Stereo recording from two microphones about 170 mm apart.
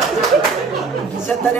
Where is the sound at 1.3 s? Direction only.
10° left (ahead or behind).